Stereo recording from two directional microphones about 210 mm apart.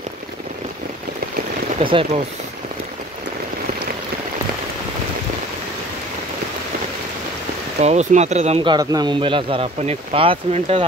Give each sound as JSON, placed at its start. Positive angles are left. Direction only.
{"t": 1.8, "sound": "speech", "side_deg": -25}
{"t": 7.8, "sound": "speech", "side_deg": -35}